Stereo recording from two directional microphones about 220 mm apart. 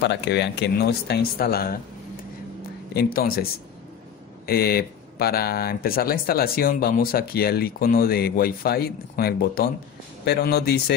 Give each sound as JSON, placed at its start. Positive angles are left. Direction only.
{"t": 0.0, "sound": "speech", "side_deg": 50}
{"t": 2.9, "sound": "speech", "side_deg": 45}
{"t": 4.5, "sound": "speech", "side_deg": 45}